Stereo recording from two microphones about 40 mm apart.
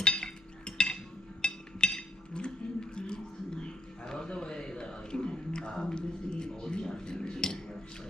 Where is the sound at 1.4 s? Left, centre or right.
Left.